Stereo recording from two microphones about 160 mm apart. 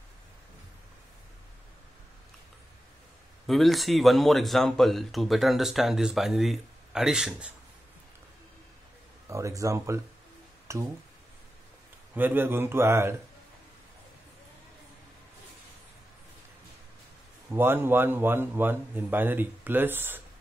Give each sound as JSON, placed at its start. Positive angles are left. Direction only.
{"t": 3.4, "sound": "speech", "side_deg": 0}
{"t": 9.3, "sound": "speech", "side_deg": -20}
{"t": 12.1, "sound": "a man's voice", "side_deg": -10}
{"t": 17.5, "sound": "a man's voice", "side_deg": -15}